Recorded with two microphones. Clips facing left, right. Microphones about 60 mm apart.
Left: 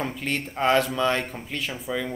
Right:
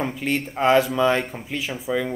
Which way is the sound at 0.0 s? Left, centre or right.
Centre.